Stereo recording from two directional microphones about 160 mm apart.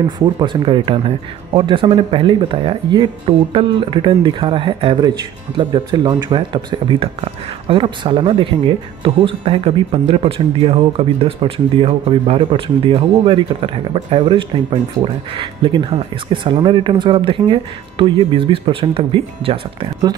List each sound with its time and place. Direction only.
0.2 s speech: 30° right (ahead or behind)